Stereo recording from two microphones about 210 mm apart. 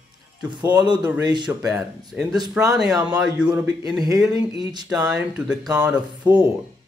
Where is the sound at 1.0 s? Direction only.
15° right (ahead or behind).